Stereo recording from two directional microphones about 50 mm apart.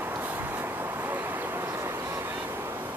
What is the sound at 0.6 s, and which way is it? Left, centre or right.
Vehicle, right.